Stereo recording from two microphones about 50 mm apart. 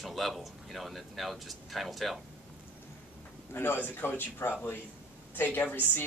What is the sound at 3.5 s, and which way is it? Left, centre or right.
Speech, left.